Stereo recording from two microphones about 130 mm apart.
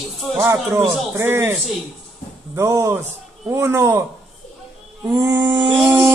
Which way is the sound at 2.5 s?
20° right (ahead or behind).